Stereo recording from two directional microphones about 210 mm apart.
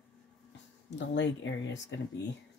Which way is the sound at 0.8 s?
60° left (ahead or behind).